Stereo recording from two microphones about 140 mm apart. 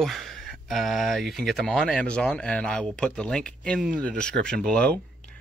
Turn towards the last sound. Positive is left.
turn(degrees=10)  # may be behind; listen again after turning